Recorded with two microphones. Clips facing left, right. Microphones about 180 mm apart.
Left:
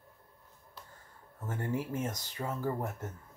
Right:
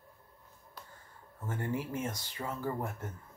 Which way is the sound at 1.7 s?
40° left (ahead or behind).